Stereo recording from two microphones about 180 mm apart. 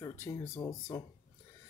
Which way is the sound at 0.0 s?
15° left (ahead or behind).